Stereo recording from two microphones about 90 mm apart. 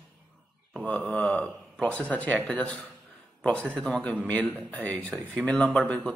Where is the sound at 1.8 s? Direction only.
15° left (ahead or behind).